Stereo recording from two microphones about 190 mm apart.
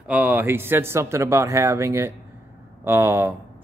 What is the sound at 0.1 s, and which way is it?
Speech, 10° right (ahead or behind).